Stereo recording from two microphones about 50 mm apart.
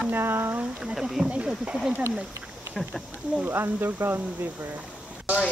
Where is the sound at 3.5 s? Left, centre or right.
Right.